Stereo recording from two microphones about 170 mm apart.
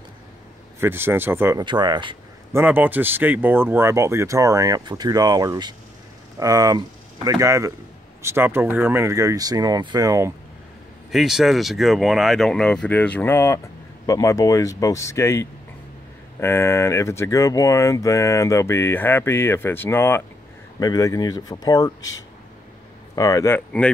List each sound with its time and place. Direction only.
0.7 s speech: 15° right (ahead or behind)
1.6 s speech: 25° right (ahead or behind)
2.5 s speech: 10° right (ahead or behind)
11.1 s speech: centre (ahead or behind)